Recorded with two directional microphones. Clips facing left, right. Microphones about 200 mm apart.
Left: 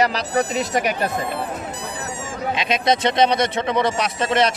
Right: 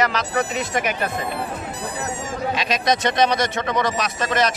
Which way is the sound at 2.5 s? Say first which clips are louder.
Left 3 dB; 25° left (ahead or behind).